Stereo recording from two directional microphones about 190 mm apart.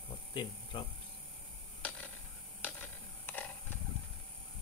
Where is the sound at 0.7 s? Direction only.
25° left (ahead or behind).